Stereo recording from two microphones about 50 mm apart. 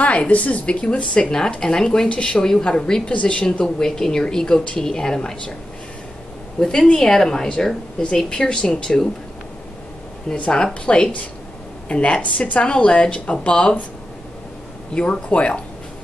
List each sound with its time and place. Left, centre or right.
0.0 s a woman's voice: left
3.6 s a woman's voice: centre
6.6 s a woman's voice: centre
10.3 s speech: left
10.6 s a woman's voice: centre
15.0 s speech: left